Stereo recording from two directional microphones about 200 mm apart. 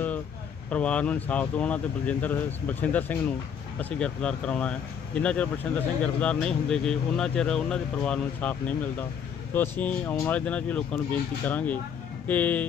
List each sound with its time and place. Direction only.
0.7 s speech: 5° left (ahead or behind)